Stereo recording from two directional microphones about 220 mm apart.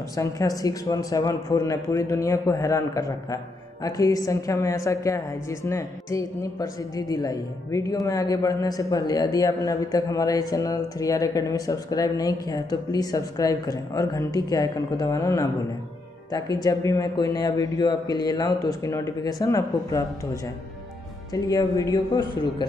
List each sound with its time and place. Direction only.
0.1 s a woman's voice: 15° left (ahead or behind)
21.3 s a woman's voice: 15° left (ahead or behind)